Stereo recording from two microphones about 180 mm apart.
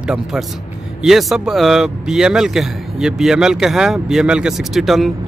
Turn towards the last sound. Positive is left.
turn(degrees=0)  # may be behind; listen again after turning